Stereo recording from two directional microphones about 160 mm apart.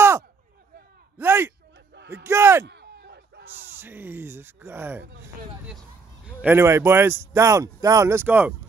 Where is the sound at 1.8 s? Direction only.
90° right.